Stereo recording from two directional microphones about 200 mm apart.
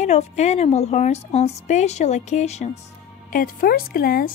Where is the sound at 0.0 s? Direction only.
35° left (ahead or behind).